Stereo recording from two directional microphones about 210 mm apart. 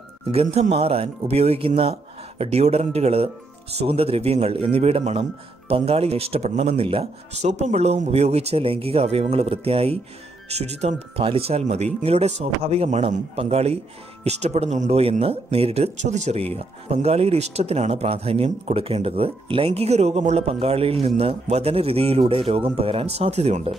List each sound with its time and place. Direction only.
0.3 s speech: 30° right (ahead or behind)